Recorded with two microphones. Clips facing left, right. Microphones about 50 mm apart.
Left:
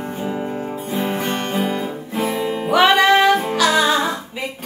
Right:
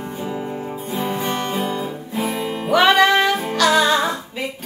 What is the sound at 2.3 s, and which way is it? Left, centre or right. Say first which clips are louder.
Music: even; centre.